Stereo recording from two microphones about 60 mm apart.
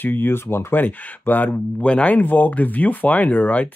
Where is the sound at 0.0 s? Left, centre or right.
Left.